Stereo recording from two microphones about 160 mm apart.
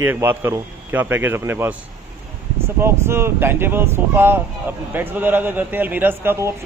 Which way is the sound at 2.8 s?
15° right (ahead or behind).